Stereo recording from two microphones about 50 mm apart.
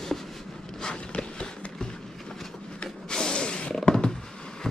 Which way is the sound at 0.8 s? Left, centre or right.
Centre.